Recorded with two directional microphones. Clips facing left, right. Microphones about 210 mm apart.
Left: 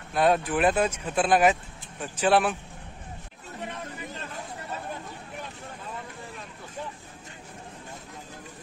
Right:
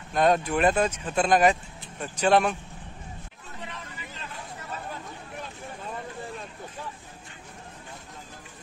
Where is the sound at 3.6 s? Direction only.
50° left (ahead or behind).